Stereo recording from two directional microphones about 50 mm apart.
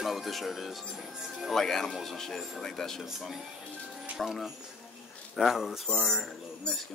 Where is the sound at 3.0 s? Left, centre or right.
Centre.